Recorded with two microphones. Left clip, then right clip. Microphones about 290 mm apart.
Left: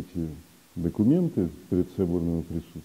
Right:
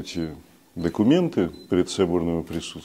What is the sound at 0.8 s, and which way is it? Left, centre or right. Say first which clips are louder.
Speech: right 4 dB; right.